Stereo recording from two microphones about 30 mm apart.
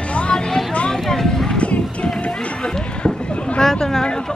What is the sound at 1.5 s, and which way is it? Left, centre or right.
Run, left.